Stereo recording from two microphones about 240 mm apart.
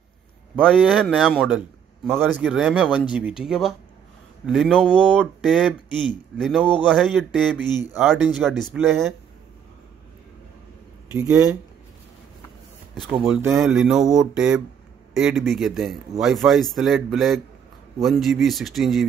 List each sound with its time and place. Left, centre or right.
0.6 s speech: centre
11.1 s speech: centre
13.2 s speech: centre